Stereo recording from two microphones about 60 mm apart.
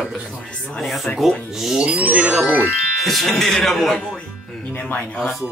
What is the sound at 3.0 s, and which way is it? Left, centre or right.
A man's voice, centre.